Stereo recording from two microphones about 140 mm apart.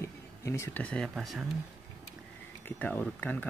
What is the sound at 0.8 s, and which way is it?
Speech, 5° left (ahead or behind).